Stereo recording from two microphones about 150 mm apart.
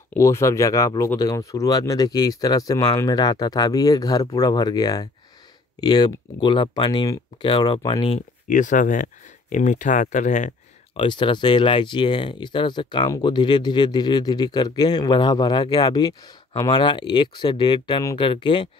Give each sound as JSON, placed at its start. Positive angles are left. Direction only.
{"t": 0.1, "sound": "speech", "side_deg": 20}
{"t": 8.5, "sound": "speech", "side_deg": 60}
{"t": 11.0, "sound": "speech", "side_deg": 35}